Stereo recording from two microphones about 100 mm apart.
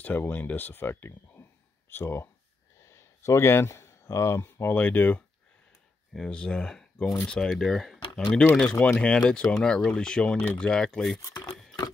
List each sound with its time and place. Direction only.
0.0 s speech: 20° left (ahead or behind)
6.1 s speech: 5° left (ahead or behind)
11.4 s sewing machine: 5° left (ahead or behind)